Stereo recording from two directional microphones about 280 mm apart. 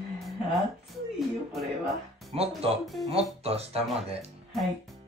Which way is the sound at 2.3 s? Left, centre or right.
Right.